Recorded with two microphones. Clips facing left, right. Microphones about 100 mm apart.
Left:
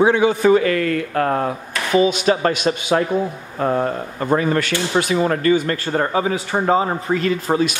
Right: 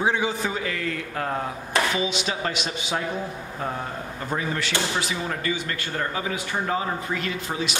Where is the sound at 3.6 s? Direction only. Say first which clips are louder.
Left 12 dB; 70° left (ahead or behind); by 6.8 s 30° left (ahead or behind).